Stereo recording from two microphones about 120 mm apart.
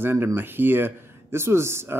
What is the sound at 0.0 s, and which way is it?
A man's voice, 20° right (ahead or behind).